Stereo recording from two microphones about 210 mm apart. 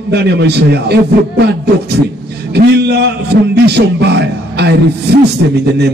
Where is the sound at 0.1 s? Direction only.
55° right (ahead or behind).